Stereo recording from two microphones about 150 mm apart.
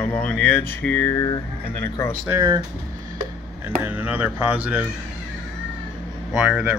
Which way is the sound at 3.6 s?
10° right (ahead or behind).